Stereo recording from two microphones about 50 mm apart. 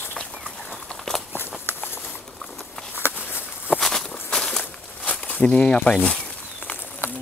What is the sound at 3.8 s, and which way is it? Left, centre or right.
Walk, centre.